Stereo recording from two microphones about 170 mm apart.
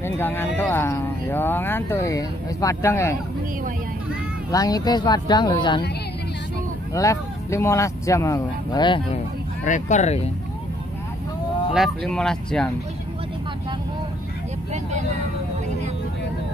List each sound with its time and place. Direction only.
0.0 s speech: 15° left (ahead or behind)
4.5 s speech: 20° left (ahead or behind)
6.9 s speech: 20° left (ahead or behind)
9.7 s speech: 45° left (ahead or behind)
12.0 s speech: 5° left (ahead or behind)
14.7 s vehicle: 45° right (ahead or behind)